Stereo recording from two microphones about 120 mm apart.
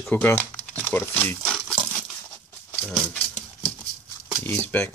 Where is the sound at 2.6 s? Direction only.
15° left (ahead or behind).